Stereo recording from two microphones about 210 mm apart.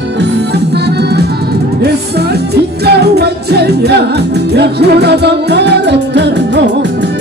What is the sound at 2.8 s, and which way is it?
Music, 50° right (ahead or behind).